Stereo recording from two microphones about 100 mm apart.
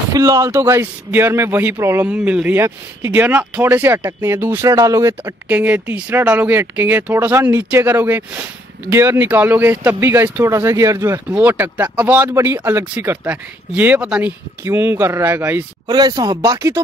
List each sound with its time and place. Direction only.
0.1 s speech: 35° right (ahead or behind)
2.0 s speech: 10° right (ahead or behind); by 5.3 s 30° right (ahead or behind)
5.5 s speech: 15° right (ahead or behind); by 11.1 s 30° right (ahead or behind)
11.2 s speech: 15° right (ahead or behind)
15.9 s speech: 45° right (ahead or behind)